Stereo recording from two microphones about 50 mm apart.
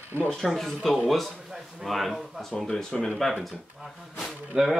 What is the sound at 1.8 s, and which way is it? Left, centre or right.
Speech, centre.